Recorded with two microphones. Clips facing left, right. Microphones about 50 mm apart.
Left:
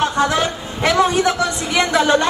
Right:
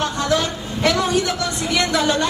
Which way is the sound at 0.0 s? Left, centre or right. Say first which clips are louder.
Left 3 dB; left.